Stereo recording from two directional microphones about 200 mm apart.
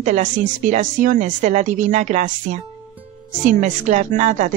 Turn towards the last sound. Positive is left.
turn(degrees=-40)  # may be behind; listen again after turning